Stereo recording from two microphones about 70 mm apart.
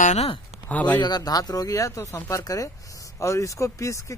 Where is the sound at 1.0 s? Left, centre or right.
Left.